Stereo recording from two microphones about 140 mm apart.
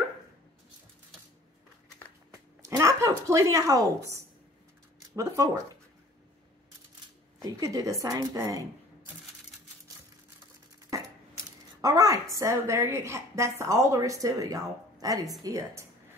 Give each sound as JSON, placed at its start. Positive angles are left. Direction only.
{"t": 2.6, "sound": "a woman's voice", "side_deg": -20}
{"t": 7.4, "sound": "a woman's voice", "side_deg": -25}
{"t": 10.9, "sound": "a sound", "side_deg": -25}
{"t": 11.8, "sound": "a woman's voice", "side_deg": -25}